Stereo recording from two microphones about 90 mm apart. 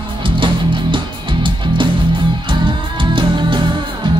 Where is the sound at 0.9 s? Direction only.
65° right (ahead or behind).